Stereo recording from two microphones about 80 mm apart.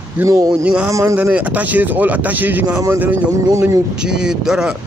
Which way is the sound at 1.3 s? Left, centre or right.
Centre.